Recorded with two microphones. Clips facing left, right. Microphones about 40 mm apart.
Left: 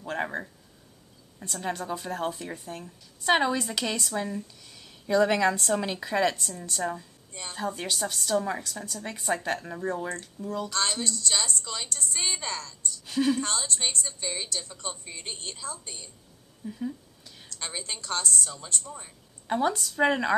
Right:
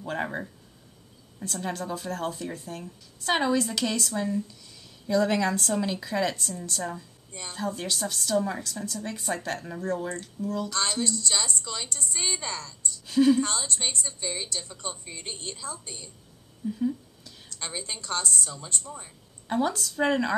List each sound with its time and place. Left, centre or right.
0.0 s speech: centre
1.4 s a woman's voice: centre
5.8 s a woman's voice: left; by 11.1 s centre
11.1 s a woman's voice: centre
16.6 s a sound: centre
19.4 s a woman's voice: centre